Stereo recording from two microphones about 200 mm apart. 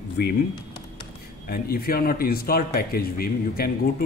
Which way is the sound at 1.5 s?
50° left (ahead or behind).